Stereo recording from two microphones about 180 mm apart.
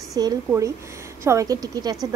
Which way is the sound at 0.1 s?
20° right (ahead or behind).